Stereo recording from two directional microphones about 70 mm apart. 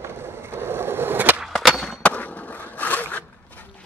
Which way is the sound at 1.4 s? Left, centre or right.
Centre.